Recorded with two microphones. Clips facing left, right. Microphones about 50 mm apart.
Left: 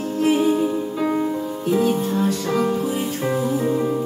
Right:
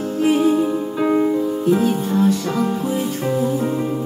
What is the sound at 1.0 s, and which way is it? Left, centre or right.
Music, centre.